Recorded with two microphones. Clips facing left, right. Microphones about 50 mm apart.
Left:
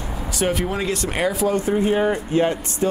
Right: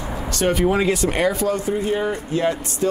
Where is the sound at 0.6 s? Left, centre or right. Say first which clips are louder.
Right 5 dB; centre.